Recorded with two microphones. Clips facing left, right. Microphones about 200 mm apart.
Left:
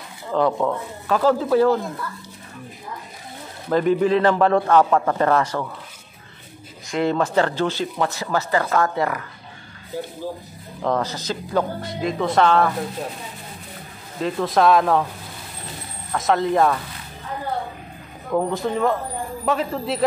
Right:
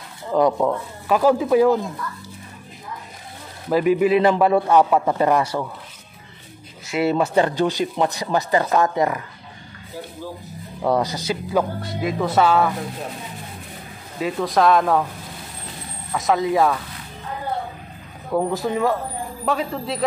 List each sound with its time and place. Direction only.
0.3 s speech: 15° right (ahead or behind)
3.7 s speech: 10° right (ahead or behind)
6.9 s speech: 10° right (ahead or behind)
10.8 s speech: 10° right (ahead or behind)
14.2 s speech: centre (ahead or behind)
16.1 s speech: centre (ahead or behind)
18.3 s speech: 5° right (ahead or behind)